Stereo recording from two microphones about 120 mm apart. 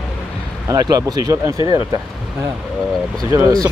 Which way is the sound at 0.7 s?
30° right (ahead or behind).